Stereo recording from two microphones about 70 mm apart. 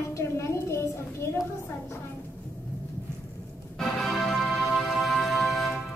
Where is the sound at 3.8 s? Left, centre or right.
Centre.